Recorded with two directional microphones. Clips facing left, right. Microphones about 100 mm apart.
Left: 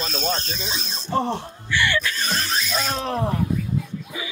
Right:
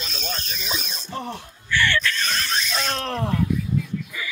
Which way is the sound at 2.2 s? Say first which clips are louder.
Left 1 dB; 35° left (ahead or behind).